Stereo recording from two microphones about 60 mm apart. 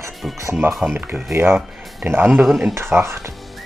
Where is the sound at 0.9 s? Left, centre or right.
Right.